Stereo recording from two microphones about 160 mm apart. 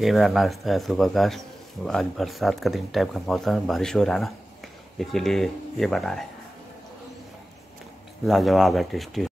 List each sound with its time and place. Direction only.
0.0 s speech: centre (ahead or behind)
8.3 s speech: centre (ahead or behind)